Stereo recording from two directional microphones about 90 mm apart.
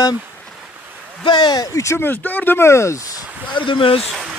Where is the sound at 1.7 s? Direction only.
30° left (ahead or behind).